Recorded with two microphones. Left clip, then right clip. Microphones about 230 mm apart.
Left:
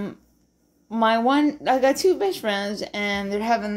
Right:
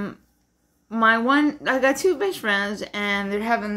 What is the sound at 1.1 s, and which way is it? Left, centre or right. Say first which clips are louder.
Speech: even; right.